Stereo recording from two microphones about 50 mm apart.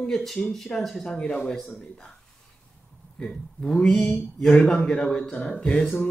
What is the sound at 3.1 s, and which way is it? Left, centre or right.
A man's voice, centre.